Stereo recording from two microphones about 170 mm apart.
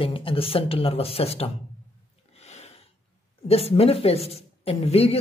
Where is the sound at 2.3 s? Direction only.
40° left (ahead or behind).